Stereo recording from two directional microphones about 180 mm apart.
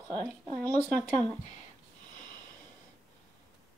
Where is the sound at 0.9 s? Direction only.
20° right (ahead or behind).